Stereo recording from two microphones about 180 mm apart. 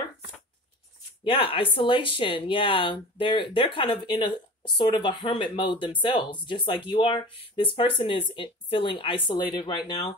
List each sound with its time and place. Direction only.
1.2 s speech: 30° left (ahead or behind)